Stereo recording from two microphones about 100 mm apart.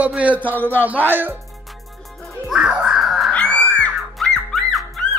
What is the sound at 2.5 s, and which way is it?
Crow, 10° right (ahead or behind).